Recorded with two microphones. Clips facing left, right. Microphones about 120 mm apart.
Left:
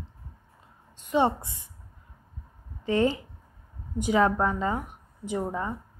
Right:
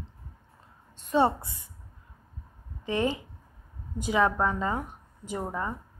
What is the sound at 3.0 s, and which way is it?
Speech, 25° right (ahead or behind).